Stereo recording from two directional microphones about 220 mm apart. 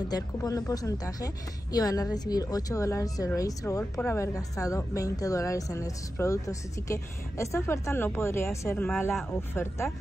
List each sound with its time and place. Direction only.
0.1 s a woman's voice: 15° left (ahead or behind)